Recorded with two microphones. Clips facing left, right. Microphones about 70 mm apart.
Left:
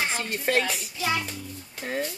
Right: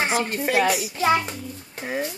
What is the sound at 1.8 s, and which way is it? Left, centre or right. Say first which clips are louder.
Speech: right 2 dB; centre.